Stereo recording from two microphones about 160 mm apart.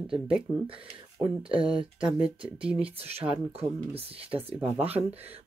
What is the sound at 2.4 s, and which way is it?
Speech, 5° right (ahead or behind).